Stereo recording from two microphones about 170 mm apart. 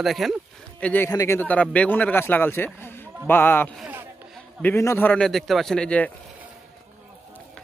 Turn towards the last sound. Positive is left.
turn(degrees=10)  # may be behind; listen again after turning